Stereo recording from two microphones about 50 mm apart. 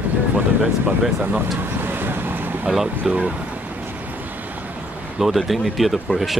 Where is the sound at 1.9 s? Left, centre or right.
Right.